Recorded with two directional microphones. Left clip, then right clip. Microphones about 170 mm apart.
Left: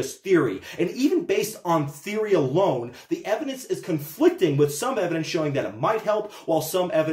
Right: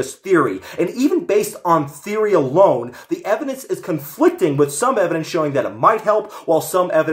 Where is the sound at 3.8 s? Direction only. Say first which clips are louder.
Right 5 dB; 20° right (ahead or behind).